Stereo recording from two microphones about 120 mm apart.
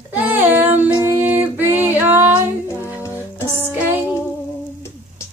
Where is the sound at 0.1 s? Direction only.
15° right (ahead or behind).